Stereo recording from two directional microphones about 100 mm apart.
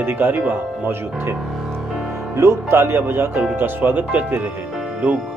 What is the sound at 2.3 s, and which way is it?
Speech, 25° right (ahead or behind).